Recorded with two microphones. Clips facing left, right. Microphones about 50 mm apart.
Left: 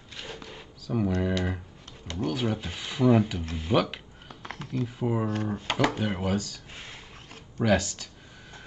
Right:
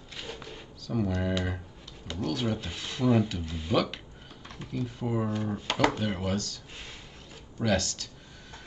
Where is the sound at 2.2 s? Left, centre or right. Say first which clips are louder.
Left 2 dB; centre.